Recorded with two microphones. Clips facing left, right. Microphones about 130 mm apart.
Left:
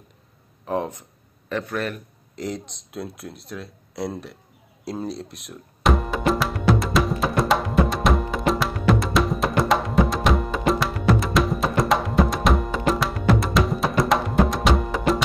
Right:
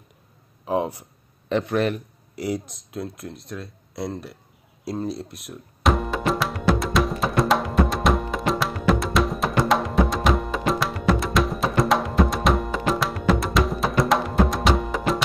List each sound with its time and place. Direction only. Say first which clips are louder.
0.7 s speech: right 2 dB; 10° right (ahead or behind)
4.8 s music: right 1 dB; centre (ahead or behind)